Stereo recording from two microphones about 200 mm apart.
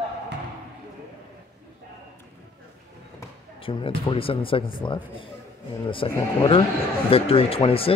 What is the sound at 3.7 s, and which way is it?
Speech, 25° left (ahead or behind).